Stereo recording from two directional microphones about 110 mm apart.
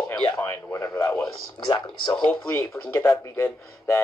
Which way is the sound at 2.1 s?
10° left (ahead or behind).